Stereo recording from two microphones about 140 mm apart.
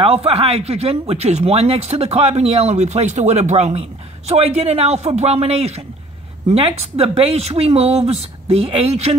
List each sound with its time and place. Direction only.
0.0 s speech: 45° right (ahead or behind)